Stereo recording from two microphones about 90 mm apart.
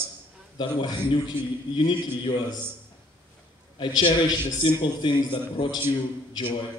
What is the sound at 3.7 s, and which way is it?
A man's voice, 60° left (ahead or behind).